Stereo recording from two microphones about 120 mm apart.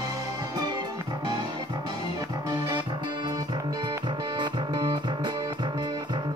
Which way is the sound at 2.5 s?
35° right (ahead or behind).